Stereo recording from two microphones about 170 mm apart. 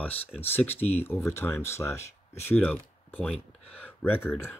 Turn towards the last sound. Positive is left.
turn(degrees=15)  # may be behind; listen again after turning